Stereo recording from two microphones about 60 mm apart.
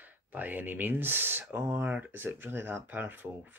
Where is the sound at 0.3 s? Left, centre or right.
Right.